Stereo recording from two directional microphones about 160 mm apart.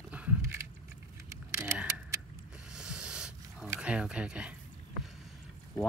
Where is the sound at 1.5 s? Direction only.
15° right (ahead or behind).